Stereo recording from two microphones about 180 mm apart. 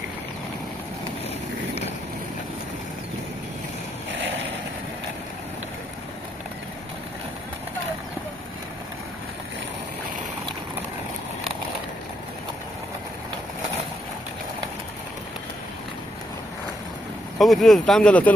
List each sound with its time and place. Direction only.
4.1 s vehicle: 90° right
17.4 s speech: centre (ahead or behind)